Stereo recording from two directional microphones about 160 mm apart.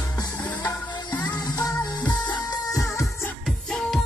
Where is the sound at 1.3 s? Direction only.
25° left (ahead or behind).